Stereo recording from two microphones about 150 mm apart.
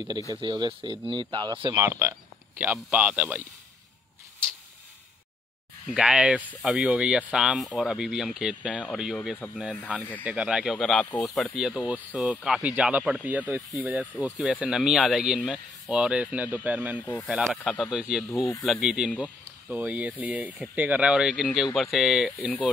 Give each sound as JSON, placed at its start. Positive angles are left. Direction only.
{"t": 0.4, "sound": "speech", "side_deg": -30}
{"t": 1.9, "sound": "speech", "side_deg": -15}
{"t": 5.9, "sound": "speech", "side_deg": -5}